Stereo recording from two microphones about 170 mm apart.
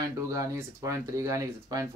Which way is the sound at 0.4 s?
20° right (ahead or behind).